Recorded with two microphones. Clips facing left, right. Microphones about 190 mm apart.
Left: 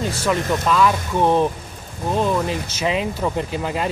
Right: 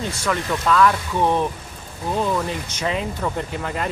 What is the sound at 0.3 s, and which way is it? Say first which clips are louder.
Speech: left 1 dB; 10° left (ahead or behind).